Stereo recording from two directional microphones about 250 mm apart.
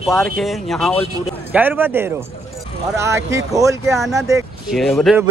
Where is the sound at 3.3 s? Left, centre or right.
Centre.